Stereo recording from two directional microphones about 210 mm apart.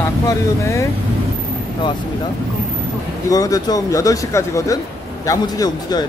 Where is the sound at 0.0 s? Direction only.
15° left (ahead or behind).